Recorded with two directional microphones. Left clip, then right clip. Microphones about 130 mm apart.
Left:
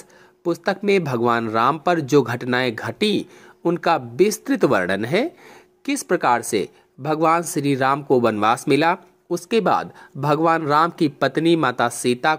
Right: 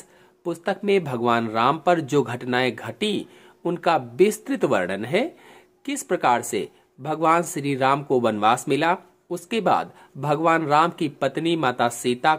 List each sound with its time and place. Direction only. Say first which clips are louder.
0.7 s speech: left 2 dB; 25° left (ahead or behind)